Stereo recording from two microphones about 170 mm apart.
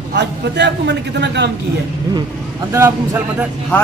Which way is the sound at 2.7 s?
15° right (ahead or behind).